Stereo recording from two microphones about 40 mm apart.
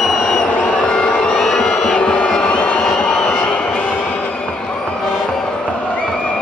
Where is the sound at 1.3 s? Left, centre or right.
Centre; by 2.7 s left.